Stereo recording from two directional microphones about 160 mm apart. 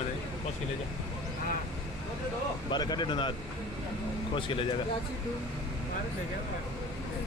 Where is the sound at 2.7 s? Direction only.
25° left (ahead or behind).